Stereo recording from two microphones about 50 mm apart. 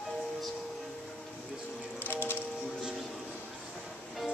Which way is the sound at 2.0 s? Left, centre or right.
Left.